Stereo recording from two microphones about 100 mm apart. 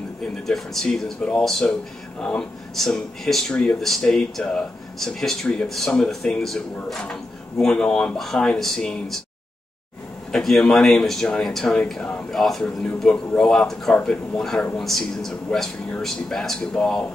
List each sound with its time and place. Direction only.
0.5 s speech: 5° left (ahead or behind)
10.3 s speech: 5° left (ahead or behind)